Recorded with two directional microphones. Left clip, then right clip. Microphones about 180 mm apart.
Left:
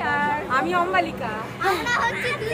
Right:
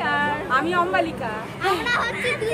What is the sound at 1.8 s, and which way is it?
Speech, 10° right (ahead or behind).